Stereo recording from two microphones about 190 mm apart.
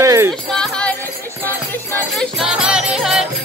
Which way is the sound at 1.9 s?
5° left (ahead or behind).